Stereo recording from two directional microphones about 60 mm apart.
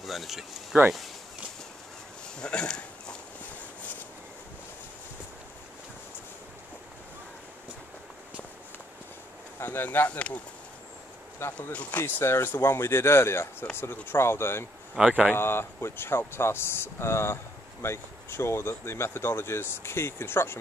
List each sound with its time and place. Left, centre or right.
0.0 s speech: centre
0.7 s speech: right
2.2 s a sound: centre
9.6 s speech: left
11.4 s speech: left
11.7 s speech: left
12.0 s speech: left
15.0 s a man's voice: centre
15.3 s speech: left